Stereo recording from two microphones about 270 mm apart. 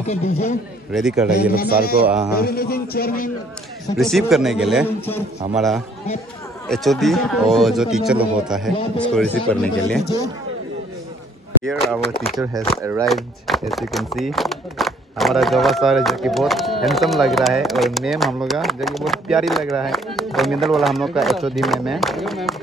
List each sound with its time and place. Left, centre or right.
0.0 s a man's voice: left
0.9 s speech: centre
1.5 s a man's voice: left
2.0 s speech: centre
2.3 s a man's voice: left
3.9 s speech: centre
6.7 s speech: centre
11.6 s speech: centre